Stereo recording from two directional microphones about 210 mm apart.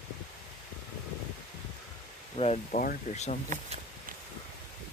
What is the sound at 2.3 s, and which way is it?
Speech, 35° left (ahead or behind).